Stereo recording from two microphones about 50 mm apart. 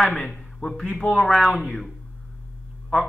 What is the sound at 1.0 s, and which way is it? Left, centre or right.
Speech, left.